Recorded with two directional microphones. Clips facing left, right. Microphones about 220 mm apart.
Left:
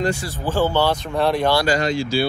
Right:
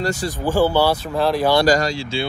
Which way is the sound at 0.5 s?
10° right (ahead or behind).